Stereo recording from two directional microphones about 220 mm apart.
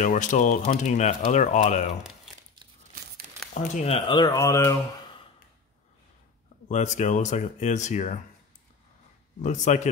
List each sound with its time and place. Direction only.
0.0 s speech: 35° left (ahead or behind)
3.7 s speech: 30° left (ahead or behind)
6.7 s speech: 35° left (ahead or behind)
9.4 s speech: 35° left (ahead or behind)